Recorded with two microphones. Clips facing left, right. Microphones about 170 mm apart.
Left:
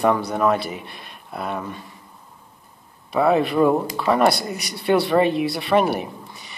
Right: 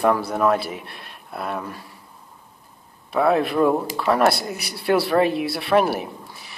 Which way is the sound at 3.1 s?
Centre (ahead or behind).